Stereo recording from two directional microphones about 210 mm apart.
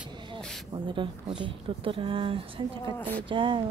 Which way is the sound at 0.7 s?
25° right (ahead or behind).